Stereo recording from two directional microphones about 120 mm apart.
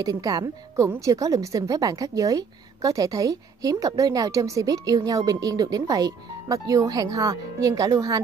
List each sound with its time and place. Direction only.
0.0 s a woman's voice: 30° right (ahead or behind)